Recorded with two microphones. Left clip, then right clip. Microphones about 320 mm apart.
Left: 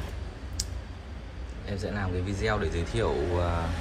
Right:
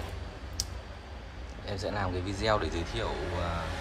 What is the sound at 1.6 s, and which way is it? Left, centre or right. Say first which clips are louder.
Speech: right 1 dB; centre.